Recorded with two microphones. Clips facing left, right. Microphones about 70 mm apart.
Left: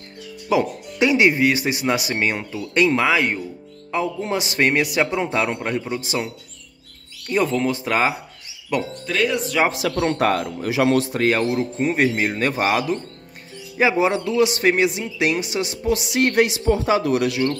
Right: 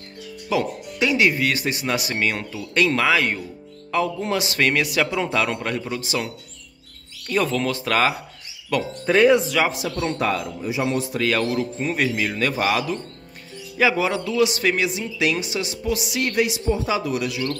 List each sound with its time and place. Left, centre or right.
0.5 s a man's voice: centre
7.2 s speech: centre
9.0 s speech: right
9.7 s a man's voice: left
10.7 s a man's voice: left
11.1 s a man's voice: left
15.0 s a man's voice: left
16.4 s speech: left